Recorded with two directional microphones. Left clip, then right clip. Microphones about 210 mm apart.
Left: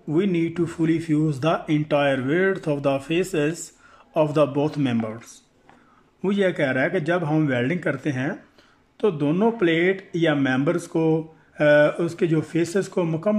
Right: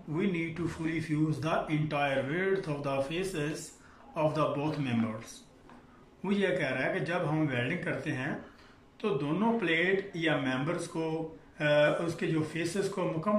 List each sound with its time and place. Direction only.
0.1 s speech: 50° left (ahead or behind)
6.2 s speech: 50° left (ahead or behind)